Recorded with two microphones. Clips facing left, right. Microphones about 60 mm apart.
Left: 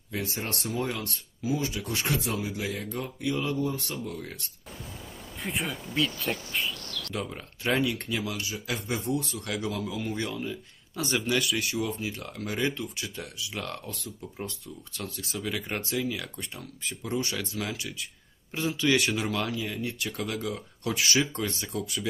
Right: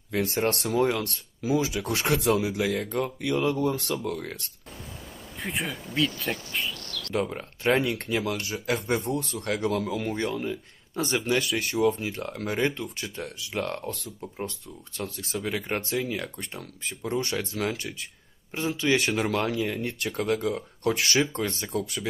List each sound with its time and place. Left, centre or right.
0.1 s speech: right
5.4 s speech: centre
7.2 s speech: right
9.7 s speech: right
10.2 s speech: right
15.0 s speech: right
19.3 s speech: right